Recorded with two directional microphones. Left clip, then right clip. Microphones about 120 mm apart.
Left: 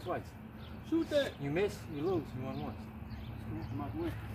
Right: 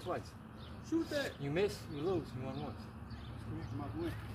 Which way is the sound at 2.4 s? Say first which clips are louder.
Left 2 dB; 5° right (ahead or behind).